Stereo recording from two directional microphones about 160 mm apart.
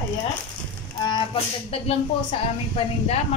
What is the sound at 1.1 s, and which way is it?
Speech, 35° left (ahead or behind).